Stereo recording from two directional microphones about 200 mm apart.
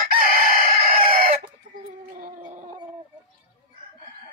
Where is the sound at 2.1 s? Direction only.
40° right (ahead or behind).